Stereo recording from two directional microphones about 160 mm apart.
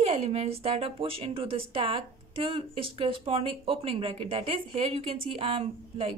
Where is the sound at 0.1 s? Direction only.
40° right (ahead or behind).